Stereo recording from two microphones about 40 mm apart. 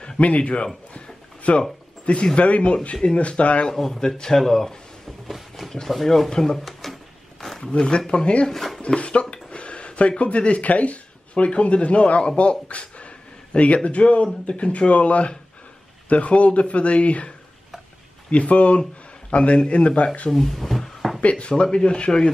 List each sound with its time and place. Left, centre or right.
0.2 s speech: left
0.9 s a sound: left
2.3 s speech: left
3.7 s speech: centre
5.9 s speech: centre
6.3 s a sound: centre
8.1 s speech: left
12.6 s a sound: left
13.8 s speech: left
18.3 s a man's voice: left
20.2 s speech: centre
21.2 s a man's voice: left